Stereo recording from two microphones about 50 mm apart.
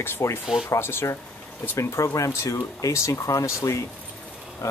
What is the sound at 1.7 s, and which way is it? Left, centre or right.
Speech, left.